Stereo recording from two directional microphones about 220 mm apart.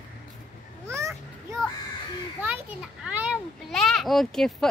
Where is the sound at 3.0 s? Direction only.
5° right (ahead or behind).